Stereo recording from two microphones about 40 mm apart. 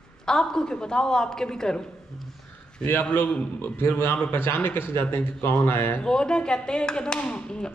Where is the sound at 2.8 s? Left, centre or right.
Left.